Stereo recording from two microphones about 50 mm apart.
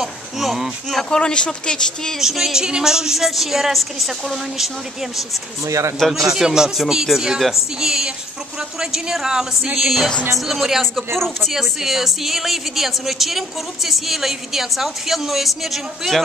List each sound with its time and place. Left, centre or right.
0.0 s speech: centre
0.9 s speech: centre
2.1 s a woman's voice: centre
5.7 s a man's voice: right
6.3 s a woman's voice: centre
11.5 s a woman's voice: centre